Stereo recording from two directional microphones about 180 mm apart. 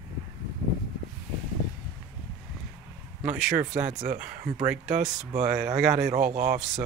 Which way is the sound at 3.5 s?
45° right (ahead or behind).